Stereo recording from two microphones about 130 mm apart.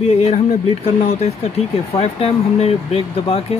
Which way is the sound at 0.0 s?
55° left (ahead or behind).